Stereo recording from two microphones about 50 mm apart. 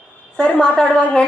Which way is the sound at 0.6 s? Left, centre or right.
Centre.